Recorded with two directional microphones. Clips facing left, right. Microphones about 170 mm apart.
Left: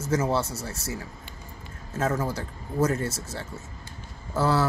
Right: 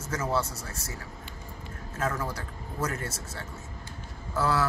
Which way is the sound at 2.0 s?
25° left (ahead or behind).